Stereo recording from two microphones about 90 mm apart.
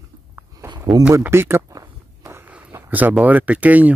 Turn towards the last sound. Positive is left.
turn(degrees=-15)  # may be behind; listen again after turning